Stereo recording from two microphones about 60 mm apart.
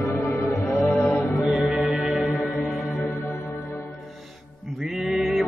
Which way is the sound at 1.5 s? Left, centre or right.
Centre.